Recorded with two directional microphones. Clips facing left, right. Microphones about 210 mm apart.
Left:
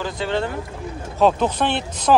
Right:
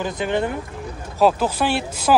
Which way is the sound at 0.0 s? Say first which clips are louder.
Right 1 dB; 15° right (ahead or behind).